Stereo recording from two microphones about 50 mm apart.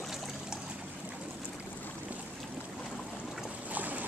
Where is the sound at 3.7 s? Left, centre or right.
Right.